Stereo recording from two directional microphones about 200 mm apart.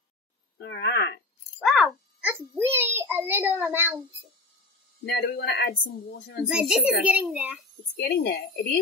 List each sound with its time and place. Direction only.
0.6 s speech: 55° left (ahead or behind)
1.6 s a sound: centre (ahead or behind)
2.3 s child singing: 10° right (ahead or behind)
5.0 s speech: 55° left (ahead or behind)
6.4 s a child's voice: 5° right (ahead or behind)
7.9 s speech: 55° left (ahead or behind)